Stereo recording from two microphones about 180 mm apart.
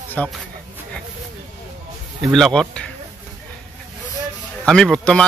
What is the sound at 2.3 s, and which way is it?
Speech, centre (ahead or behind).